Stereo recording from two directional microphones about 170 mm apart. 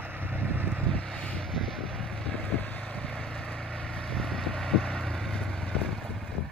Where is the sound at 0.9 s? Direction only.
5° left (ahead or behind).